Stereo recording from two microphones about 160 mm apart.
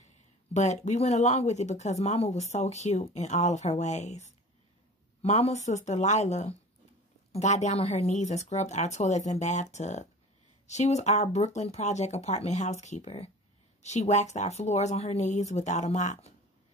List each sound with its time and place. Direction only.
0.0 s speech: 45° left (ahead or behind)